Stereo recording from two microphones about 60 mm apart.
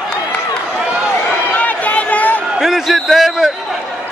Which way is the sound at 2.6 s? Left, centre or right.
Centre.